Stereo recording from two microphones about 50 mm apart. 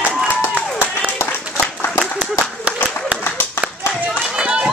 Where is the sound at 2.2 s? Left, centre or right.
Right.